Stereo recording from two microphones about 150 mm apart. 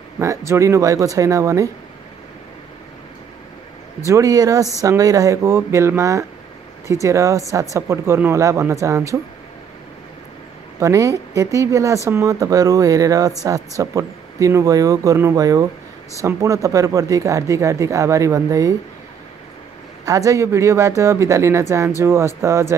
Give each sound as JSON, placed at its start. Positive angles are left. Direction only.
{"t": 0.5, "sound": "speech", "side_deg": -20}
{"t": 4.1, "sound": "speech", "side_deg": -20}
{"t": 10.8, "sound": "speech", "side_deg": -20}
{"t": 20.1, "sound": "speech", "side_deg": -20}